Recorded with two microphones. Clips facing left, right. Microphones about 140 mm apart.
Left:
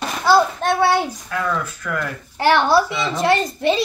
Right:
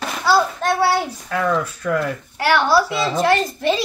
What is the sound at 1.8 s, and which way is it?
Speech, 30° right (ahead or behind).